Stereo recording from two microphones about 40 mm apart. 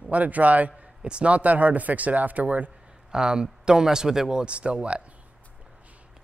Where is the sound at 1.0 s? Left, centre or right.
Right.